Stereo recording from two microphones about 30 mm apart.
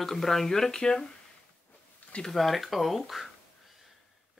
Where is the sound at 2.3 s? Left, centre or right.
Centre.